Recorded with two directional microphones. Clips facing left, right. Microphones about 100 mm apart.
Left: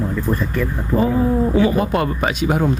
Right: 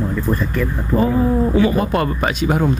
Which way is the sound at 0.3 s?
5° left (ahead or behind).